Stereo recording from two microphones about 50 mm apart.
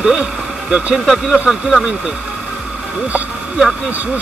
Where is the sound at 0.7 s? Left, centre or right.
Right.